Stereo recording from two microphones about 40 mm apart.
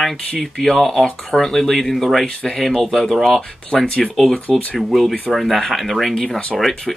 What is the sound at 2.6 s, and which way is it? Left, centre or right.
Speech, centre.